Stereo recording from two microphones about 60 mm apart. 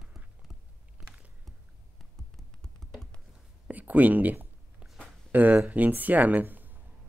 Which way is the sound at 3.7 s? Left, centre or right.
Right.